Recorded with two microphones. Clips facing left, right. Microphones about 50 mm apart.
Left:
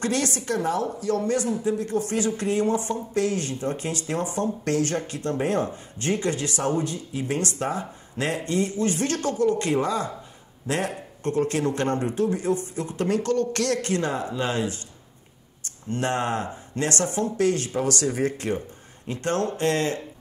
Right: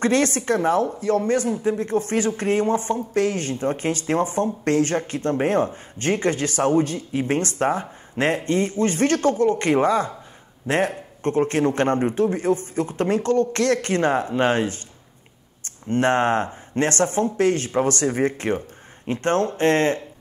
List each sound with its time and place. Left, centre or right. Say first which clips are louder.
0.0 s speech: right 6 dB; right
11.2 s speech: right 4 dB; right
15.9 s speech: right 7 dB; right